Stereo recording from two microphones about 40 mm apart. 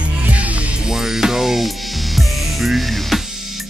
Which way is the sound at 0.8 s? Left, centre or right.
Centre.